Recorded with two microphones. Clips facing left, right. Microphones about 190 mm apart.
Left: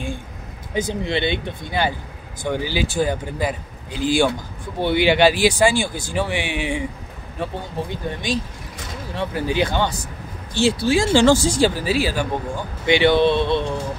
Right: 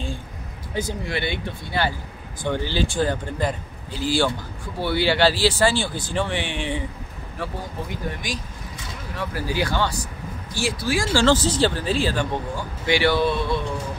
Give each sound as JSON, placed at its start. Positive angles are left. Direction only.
{"t": 0.7, "sound": "speech", "side_deg": 20}
{"t": 7.4, "sound": "speech", "side_deg": 20}
{"t": 11.2, "sound": "speech", "side_deg": 10}
{"t": 12.8, "sound": "speech", "side_deg": 20}